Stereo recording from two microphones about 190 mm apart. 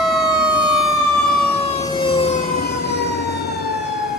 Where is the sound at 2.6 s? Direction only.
60° left (ahead or behind).